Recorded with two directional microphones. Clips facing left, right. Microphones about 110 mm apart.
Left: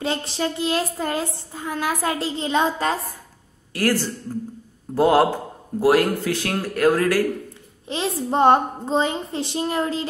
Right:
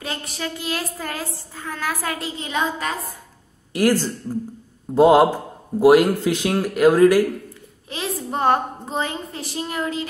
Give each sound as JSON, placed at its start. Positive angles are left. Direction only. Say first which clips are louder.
{"t": 0.0, "sound": "child singing", "louder": "left 5 dB", "side_deg": 30}
{"t": 3.7, "sound": "a man's voice", "louder": "right 3 dB", "side_deg": -15}
{"t": 7.9, "sound": "child singing", "louder": "left 4 dB", "side_deg": 25}